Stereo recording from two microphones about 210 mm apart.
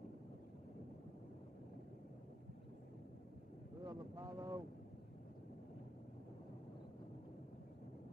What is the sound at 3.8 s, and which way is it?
Speech, 15° right (ahead or behind).